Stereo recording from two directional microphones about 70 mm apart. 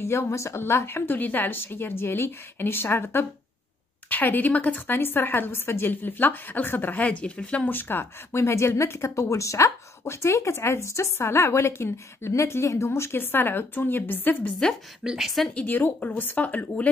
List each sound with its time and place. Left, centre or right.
0.0 s a woman's voice: left; by 7.7 s centre
7.7 s speech: left
15.0 s speech: centre
15.6 s a woman's voice: left